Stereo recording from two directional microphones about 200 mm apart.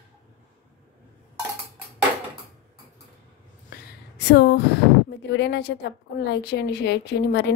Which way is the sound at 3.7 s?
60° left (ahead or behind).